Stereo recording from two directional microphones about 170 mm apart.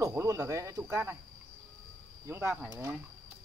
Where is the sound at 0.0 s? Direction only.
15° right (ahead or behind).